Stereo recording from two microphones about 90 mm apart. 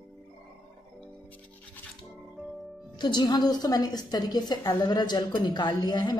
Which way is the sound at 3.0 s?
50° left (ahead or behind).